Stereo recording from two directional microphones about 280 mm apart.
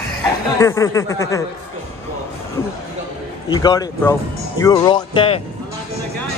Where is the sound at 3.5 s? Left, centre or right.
Centre.